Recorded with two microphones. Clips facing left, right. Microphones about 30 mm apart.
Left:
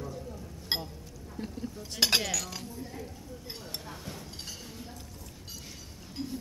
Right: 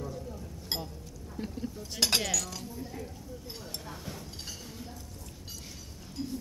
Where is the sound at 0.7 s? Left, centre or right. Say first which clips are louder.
Left 3 dB; left.